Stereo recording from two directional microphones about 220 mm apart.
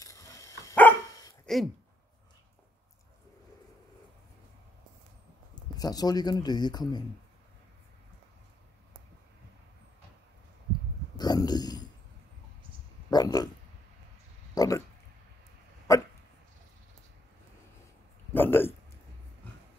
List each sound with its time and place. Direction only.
0.0 s dog: 15° left (ahead or behind)
1.4 s a sound: centre (ahead or behind)
5.5 s speech: 15° left (ahead or behind)
11.1 s a sound: 20° left (ahead or behind)
13.1 s speech: 15° left (ahead or behind)
14.5 s speech: 15° left (ahead or behind)
15.9 s hiccup: 15° left (ahead or behind)
18.3 s speech: 10° left (ahead or behind)